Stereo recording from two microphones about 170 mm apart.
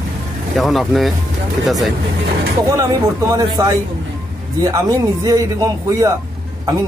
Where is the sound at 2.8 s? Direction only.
20° right (ahead or behind).